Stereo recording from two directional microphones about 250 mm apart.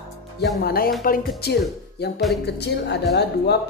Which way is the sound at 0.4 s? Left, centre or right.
Left.